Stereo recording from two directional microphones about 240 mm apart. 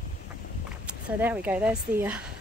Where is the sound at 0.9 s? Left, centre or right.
Centre.